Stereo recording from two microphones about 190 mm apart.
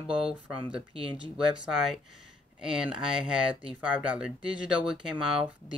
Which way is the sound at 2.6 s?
5° right (ahead or behind).